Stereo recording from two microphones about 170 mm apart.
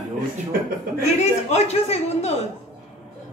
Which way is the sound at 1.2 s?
40° left (ahead or behind).